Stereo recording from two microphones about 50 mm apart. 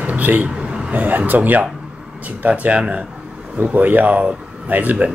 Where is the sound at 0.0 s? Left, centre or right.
Right.